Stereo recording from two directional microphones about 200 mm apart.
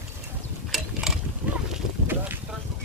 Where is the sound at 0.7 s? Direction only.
Centre (ahead or behind).